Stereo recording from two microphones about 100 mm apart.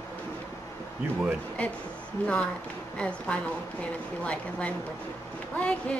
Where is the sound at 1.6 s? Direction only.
10° left (ahead or behind).